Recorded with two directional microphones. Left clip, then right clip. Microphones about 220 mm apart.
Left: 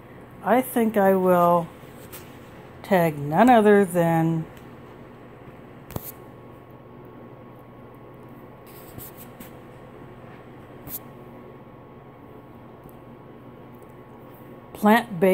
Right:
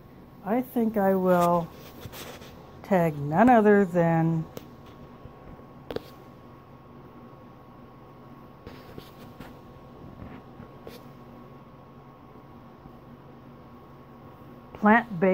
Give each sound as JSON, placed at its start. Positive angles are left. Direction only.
{"t": 0.5, "sound": "speech", "side_deg": 0}
{"t": 2.8, "sound": "speech", "side_deg": 0}
{"t": 14.9, "sound": "a woman's voice", "side_deg": 20}